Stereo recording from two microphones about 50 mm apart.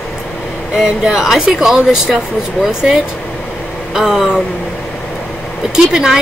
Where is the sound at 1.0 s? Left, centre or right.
Centre.